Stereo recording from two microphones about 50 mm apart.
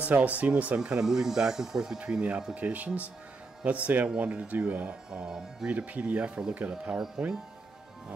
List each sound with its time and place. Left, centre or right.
0.0 s speech: right
0.7 s speech: centre
2.5 s speech: right
5.2 s speech: centre
5.7 s speech: right